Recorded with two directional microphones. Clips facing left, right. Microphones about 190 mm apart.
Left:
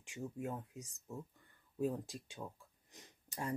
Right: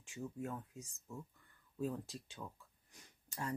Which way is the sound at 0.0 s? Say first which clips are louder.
Left 1 dB; 20° left (ahead or behind).